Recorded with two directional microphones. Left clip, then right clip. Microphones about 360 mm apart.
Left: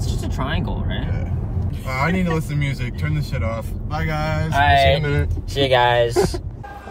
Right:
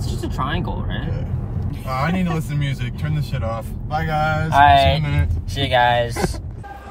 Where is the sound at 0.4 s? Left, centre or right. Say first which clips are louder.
Right 2 dB; centre.